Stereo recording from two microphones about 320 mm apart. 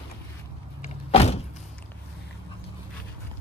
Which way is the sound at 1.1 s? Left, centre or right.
Centre.